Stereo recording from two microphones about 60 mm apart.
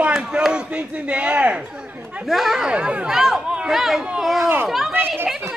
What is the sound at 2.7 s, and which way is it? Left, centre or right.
Speech, centre.